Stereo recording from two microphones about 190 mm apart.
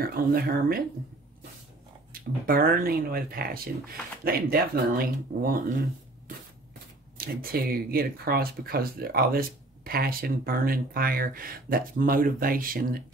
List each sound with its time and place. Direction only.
0.0 s speech: 50° right (ahead or behind)
2.1 s speech: 50° right (ahead or behind)
7.2 s speech: 50° right (ahead or behind)